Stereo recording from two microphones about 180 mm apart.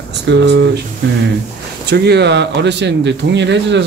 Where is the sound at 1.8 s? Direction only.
65° right (ahead or behind).